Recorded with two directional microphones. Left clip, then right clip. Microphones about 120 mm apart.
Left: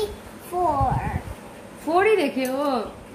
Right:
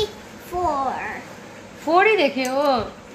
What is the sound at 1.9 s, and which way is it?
Speech, 30° right (ahead or behind).